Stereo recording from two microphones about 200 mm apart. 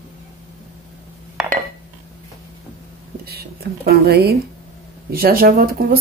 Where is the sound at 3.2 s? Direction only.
50° right (ahead or behind).